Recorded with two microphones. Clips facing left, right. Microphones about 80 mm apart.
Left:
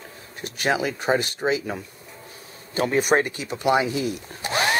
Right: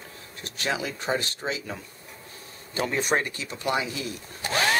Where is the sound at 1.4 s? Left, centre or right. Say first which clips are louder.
Left 8 dB; left.